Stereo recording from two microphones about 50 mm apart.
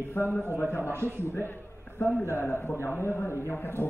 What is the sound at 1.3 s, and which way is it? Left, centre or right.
A man's voice, left.